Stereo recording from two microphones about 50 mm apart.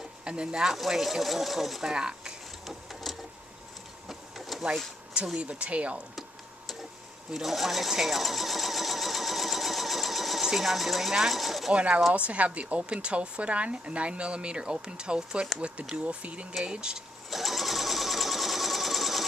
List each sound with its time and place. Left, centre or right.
0.2 s speech: centre
0.7 s speech: centre
2.6 s printer: centre
4.1 s a sound: centre
5.1 s speech: right
7.2 s sewing machine: centre
11.7 s speech: right
17.3 s sewing machine: centre